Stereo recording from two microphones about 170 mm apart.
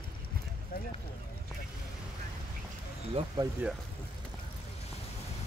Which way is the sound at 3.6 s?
10° right (ahead or behind).